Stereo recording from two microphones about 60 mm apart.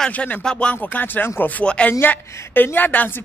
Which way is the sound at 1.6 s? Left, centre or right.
Centre.